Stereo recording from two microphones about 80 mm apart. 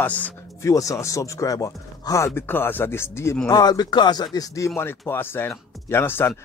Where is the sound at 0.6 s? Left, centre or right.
Left.